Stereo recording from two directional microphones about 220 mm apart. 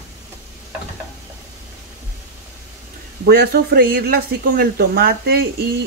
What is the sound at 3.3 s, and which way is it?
Speech, 45° right (ahead or behind).